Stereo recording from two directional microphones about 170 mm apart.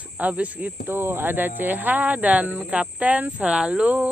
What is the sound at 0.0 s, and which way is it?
Speech, 10° right (ahead or behind).